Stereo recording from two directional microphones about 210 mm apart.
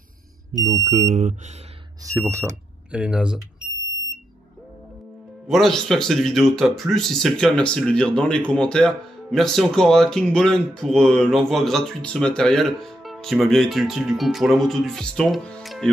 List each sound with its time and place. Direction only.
0.5 s speech: 35° right (ahead or behind)
2.0 s speech: 15° right (ahead or behind)
5.5 s speech: centre (ahead or behind)